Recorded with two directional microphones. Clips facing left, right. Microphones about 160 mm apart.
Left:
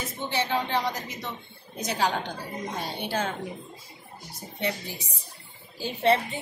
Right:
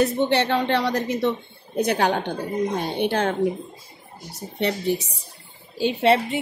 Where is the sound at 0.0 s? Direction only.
65° right (ahead or behind).